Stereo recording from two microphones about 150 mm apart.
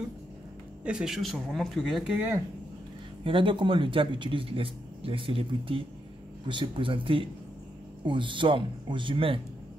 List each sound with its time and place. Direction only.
0.8 s speech: 5° right (ahead or behind)
3.3 s speech: 35° right (ahead or behind)